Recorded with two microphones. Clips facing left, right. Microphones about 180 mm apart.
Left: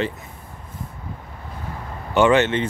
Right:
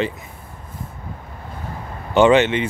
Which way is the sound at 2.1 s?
20° right (ahead or behind).